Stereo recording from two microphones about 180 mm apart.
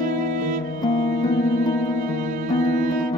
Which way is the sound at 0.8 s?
25° left (ahead or behind).